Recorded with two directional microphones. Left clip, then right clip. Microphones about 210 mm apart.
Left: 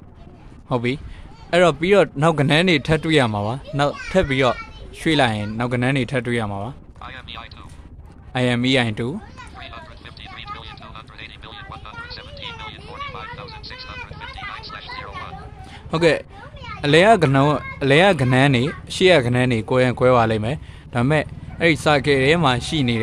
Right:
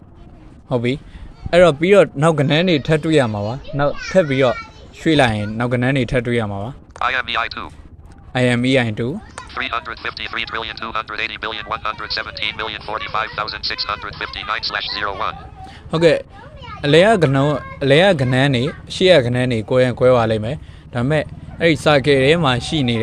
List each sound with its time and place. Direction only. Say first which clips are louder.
0.7 s speech: right 3 dB; centre (ahead or behind)
7.0 s speech: right 18 dB; 40° right (ahead or behind)
8.3 s speech: right 3 dB; 10° right (ahead or behind)
9.3 s speech: right 14 dB; 40° right (ahead or behind)
15.9 s speech: right 3 dB; centre (ahead or behind)